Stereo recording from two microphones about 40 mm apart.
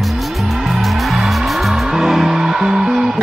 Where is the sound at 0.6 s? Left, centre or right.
Centre.